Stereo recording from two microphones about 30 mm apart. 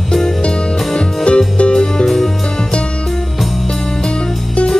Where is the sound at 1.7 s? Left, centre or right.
Left.